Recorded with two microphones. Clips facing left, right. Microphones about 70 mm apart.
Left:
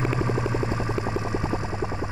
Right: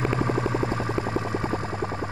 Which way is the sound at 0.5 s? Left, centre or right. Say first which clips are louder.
Right 1 dB; right.